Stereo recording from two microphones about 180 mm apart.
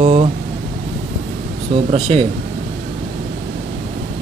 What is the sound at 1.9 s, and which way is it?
Speech, 35° right (ahead or behind).